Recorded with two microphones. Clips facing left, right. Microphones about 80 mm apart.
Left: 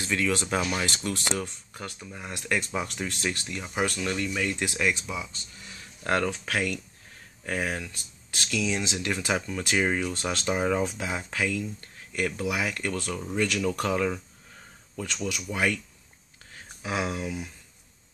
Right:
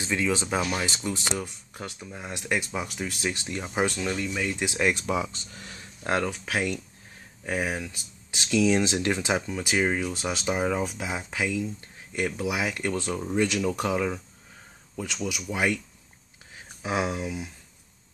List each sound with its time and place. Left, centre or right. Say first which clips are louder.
0.0 s speech: right 1 dB; centre
2.7 s speech: left 1 dB; centre
3.6 s speech: right 2 dB; right
4.1 s speech: even; centre
5.0 s speech: right 7 dB; right
6.0 s speech: even; centre
8.5 s speech: right 7 dB; right
9.1 s speech: right 2 dB; right
11.4 s speech: right 2 dB; centre
16.8 s speech: right 2 dB; centre